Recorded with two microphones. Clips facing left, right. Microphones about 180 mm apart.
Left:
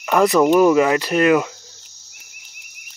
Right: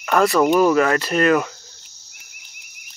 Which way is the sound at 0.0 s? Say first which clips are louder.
Left 2 dB; 15° left (ahead or behind).